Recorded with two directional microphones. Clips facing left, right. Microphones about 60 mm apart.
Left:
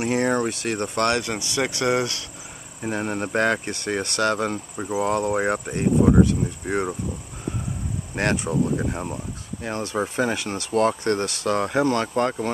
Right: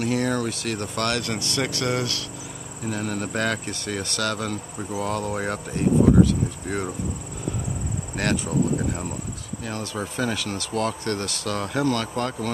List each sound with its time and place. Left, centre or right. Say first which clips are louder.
0.0 s speech: left 2 dB; left
1.2 s speech: left 1 dB; centre
8.2 s speech: left 1 dB; left